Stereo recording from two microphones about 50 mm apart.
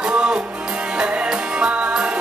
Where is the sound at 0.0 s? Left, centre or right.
Centre.